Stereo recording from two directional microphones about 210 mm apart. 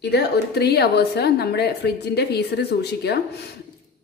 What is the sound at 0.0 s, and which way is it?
A woman's voice, 50° left (ahead or behind).